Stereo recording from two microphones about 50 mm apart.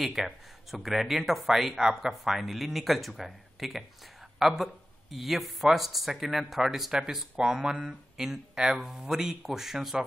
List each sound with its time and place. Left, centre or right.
0.0 s speech: centre